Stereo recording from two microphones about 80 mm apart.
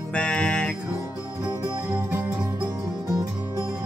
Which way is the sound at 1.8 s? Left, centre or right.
Right.